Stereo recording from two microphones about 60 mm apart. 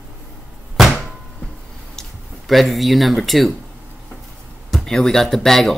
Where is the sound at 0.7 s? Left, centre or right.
Centre.